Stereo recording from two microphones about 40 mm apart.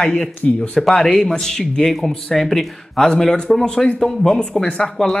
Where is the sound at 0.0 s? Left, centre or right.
Centre.